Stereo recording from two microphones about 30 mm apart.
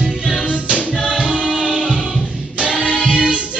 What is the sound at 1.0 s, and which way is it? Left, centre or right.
Choir, right.